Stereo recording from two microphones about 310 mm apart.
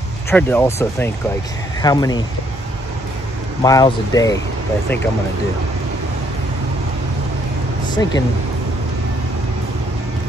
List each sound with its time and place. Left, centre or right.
0.3 s speech: centre
3.6 s speech: centre
7.9 s speech: centre